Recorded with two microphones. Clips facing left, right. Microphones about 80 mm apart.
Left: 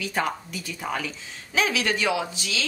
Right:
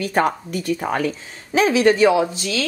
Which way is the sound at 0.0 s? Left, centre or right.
Right.